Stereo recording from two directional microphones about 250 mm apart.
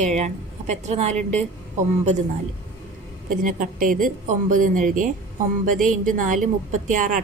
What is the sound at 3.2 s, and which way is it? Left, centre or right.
A woman's voice, right.